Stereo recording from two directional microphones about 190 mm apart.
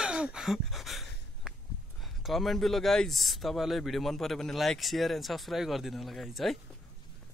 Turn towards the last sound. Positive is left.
turn(degrees=0)  # may be behind; listen again after turning